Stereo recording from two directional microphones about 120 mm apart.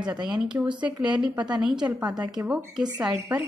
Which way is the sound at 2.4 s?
10° right (ahead or behind).